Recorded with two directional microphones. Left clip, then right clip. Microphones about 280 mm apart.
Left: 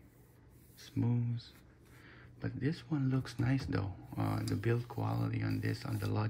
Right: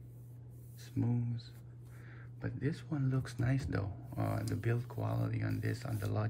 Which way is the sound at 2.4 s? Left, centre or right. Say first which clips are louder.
Left 1 dB; centre.